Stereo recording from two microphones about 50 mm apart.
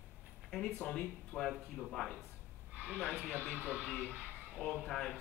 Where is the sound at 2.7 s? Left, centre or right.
Right.